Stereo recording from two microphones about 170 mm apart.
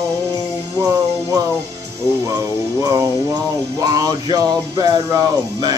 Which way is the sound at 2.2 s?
20° right (ahead or behind).